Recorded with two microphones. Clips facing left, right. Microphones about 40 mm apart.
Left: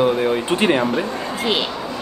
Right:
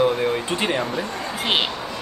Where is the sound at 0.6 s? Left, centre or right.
Left.